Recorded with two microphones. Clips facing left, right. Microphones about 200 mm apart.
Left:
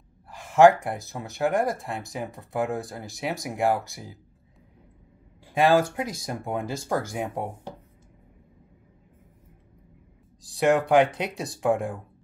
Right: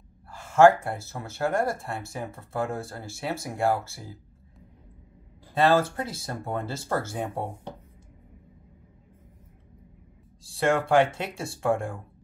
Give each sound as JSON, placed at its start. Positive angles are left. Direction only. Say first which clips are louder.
{"t": 0.3, "sound": "speech", "louder": "left 1 dB", "side_deg": 15}
{"t": 5.5, "sound": "speech", "louder": "left 1 dB", "side_deg": 15}
{"t": 10.4, "sound": "speech", "louder": "left 3 dB", "side_deg": 15}